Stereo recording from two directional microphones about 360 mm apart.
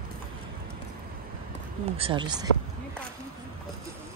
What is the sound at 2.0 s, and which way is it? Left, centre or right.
Speech, centre.